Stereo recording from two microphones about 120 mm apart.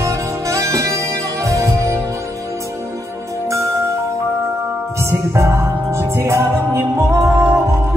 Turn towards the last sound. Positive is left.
turn(degrees=-15)  # may be behind; listen again after turning